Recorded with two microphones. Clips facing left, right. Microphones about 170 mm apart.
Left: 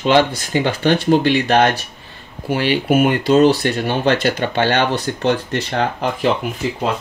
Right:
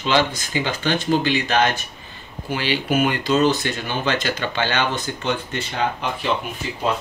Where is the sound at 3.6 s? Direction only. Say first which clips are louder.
Left 7 dB; 65° left (ahead or behind).